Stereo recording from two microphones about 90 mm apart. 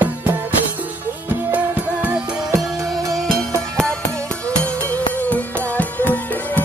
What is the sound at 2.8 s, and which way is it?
Music, 35° right (ahead or behind).